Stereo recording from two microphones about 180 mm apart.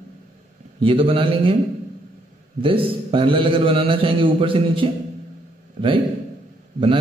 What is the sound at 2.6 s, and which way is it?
A man's voice, 30° right (ahead or behind).